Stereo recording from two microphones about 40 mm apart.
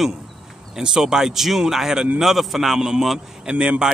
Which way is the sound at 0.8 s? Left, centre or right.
Centre.